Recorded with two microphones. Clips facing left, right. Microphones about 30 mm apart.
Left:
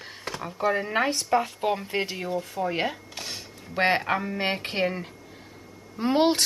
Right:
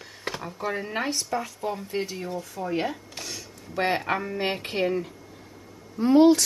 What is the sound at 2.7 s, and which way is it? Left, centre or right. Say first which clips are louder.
Speech: right 3 dB; left.